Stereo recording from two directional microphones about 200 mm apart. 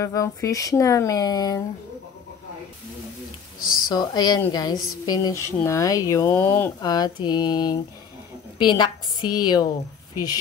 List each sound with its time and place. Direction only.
0.0 s speech: 15° left (ahead or behind)
3.6 s speech: 45° left (ahead or behind)
3.9 s a woman's voice: 20° left (ahead or behind)